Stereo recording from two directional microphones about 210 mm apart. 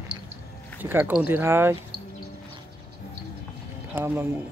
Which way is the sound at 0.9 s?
10° right (ahead or behind).